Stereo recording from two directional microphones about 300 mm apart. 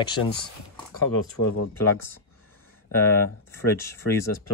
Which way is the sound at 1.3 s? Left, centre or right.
Left.